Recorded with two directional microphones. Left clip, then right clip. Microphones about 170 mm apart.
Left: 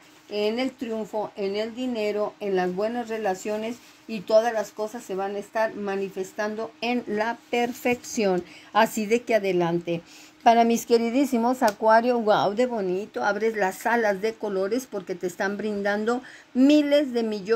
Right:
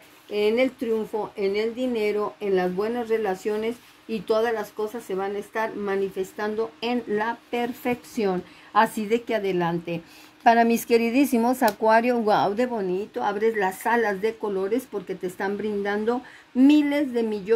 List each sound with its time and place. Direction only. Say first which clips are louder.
0.3 s speech: right 4 dB; 15° left (ahead or behind)
11.1 s speech: right 1 dB; centre (ahead or behind)
12.4 s a woman's voice: even; 15° left (ahead or behind); by 17.4 s 30° left (ahead or behind)